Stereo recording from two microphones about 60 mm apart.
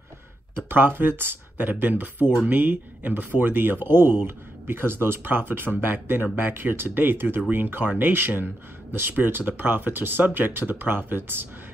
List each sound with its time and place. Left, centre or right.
0.7 s speech: right